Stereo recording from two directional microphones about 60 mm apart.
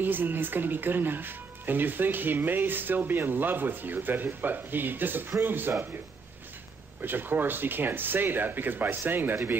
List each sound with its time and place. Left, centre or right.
0.0 s speech: right
7.0 s speech: right